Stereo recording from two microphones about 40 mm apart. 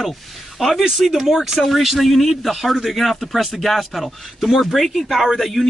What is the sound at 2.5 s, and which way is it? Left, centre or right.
Speech, centre.